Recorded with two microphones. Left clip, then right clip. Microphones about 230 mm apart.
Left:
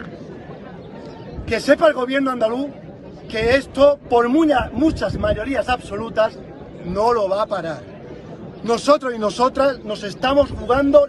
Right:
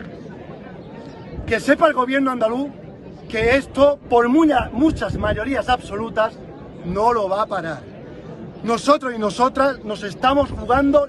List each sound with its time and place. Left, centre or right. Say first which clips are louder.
1.5 s speech: left 1 dB; centre